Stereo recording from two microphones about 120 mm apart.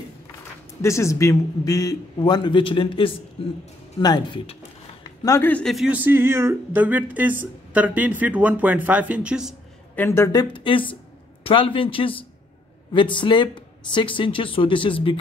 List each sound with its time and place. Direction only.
0.8 s a man's voice: 25° left (ahead or behind); by 3.5 s 55° left (ahead or behind)
4.0 s speech: 35° left (ahead or behind)
5.0 s a sound: 30° left (ahead or behind)
5.4 s a man's voice: 10° left (ahead or behind)
5.9 s speech: 15° right (ahead or behind)
9.9 s a man's voice: 20° left (ahead or behind)
10.3 s speech: 35° left (ahead or behind)